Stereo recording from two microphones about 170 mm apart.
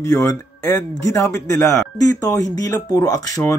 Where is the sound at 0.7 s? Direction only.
15° left (ahead or behind).